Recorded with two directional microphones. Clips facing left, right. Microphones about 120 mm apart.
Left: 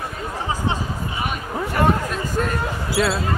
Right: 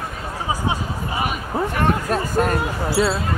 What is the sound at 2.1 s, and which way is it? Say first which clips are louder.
Speech: right 4 dB; 45° right (ahead or behind).